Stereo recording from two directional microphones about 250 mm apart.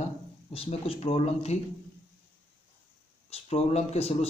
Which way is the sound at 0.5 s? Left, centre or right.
Left.